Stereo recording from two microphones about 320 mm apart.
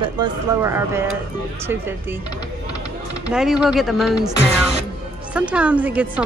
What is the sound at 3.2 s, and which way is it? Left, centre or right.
Speech, centre.